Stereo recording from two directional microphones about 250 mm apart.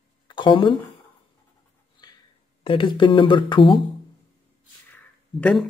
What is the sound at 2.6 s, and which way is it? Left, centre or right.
Speech, centre.